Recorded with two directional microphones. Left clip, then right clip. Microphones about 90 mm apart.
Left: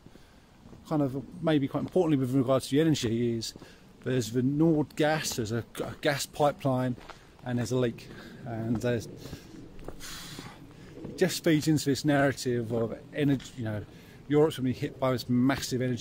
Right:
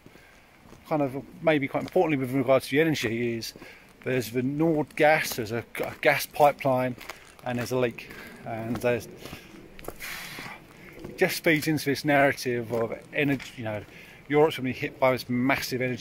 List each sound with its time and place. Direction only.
0.8 s speech: 25° left (ahead or behind)
8.7 s speech: 40° left (ahead or behind)
10.0 s a sound: 30° left (ahead or behind)
11.1 s speech: 40° left (ahead or behind)